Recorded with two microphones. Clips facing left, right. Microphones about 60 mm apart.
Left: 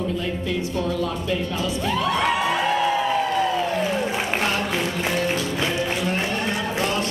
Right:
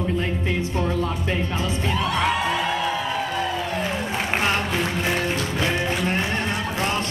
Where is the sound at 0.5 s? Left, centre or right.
Right.